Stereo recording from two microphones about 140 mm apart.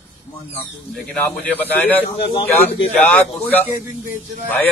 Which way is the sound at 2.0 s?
45° left (ahead or behind).